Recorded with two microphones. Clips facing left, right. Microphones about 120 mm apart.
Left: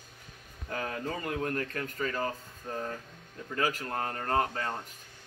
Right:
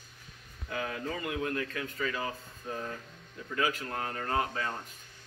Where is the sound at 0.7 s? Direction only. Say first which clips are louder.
Left 1 dB; 40° left (ahead or behind).